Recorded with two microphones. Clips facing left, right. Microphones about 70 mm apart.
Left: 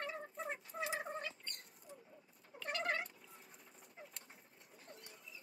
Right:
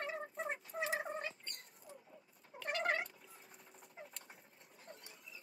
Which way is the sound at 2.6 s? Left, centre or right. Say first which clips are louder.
Right 2 dB; right.